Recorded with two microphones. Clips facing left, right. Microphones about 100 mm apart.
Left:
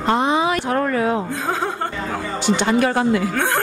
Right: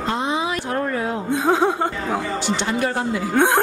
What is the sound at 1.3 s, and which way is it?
Speech, 20° right (ahead or behind).